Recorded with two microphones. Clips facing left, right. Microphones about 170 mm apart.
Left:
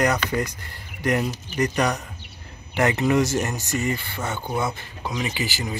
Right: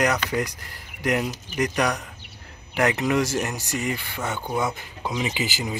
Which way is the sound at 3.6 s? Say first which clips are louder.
Left 2 dB; 10° right (ahead or behind).